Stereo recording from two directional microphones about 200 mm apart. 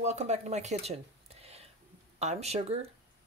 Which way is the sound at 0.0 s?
35° right (ahead or behind).